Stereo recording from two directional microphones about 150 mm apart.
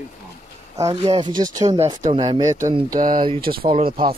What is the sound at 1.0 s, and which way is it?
Speech, 40° right (ahead or behind).